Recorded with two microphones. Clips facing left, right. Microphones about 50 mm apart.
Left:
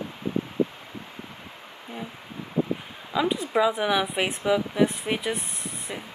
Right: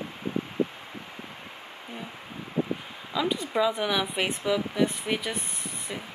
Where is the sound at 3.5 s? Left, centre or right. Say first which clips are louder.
Left 3 dB; centre.